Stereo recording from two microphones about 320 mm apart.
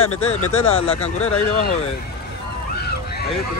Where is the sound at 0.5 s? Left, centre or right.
Centre.